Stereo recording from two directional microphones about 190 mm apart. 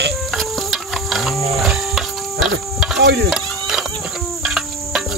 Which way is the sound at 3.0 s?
60° right (ahead or behind).